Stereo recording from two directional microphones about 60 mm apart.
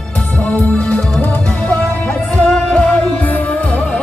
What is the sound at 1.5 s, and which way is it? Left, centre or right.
Music, left.